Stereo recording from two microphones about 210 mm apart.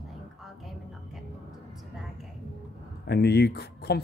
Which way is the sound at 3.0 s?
50° left (ahead or behind).